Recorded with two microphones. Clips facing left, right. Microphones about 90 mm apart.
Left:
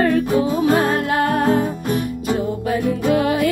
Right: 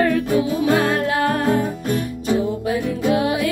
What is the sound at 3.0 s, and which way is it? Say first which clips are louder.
Music: left 1 dB; 50° left (ahead or behind).